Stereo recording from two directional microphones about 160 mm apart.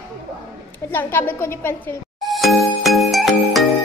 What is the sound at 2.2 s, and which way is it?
Music, centre (ahead or behind).